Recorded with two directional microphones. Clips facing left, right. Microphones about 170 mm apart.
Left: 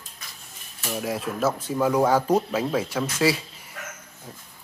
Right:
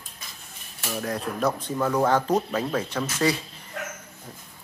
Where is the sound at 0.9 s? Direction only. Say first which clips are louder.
Left 1 dB; 5° left (ahead or behind).